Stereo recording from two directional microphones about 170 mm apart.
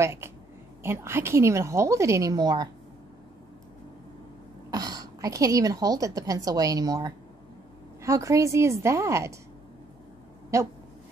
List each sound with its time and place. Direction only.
0.0 s a woman's voice: 15° right (ahead or behind)
4.6 s a woman's voice: 20° right (ahead or behind)
10.5 s a woman's voice: 15° right (ahead or behind)